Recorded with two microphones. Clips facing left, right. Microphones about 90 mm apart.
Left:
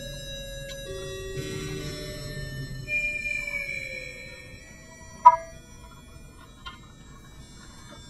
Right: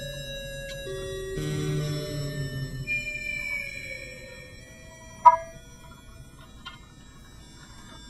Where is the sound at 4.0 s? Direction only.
50° right (ahead or behind).